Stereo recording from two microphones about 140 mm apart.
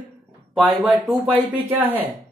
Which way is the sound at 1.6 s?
15° right (ahead or behind).